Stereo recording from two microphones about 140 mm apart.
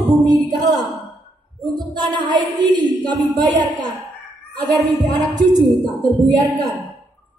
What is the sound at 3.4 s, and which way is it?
Speech, 30° right (ahead or behind).